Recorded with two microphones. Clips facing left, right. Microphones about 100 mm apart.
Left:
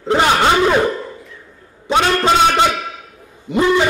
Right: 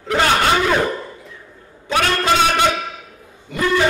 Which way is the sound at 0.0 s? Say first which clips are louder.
Left 3 dB; 20° left (ahead or behind).